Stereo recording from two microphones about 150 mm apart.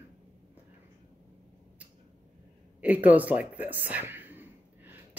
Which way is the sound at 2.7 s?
10° right (ahead or behind).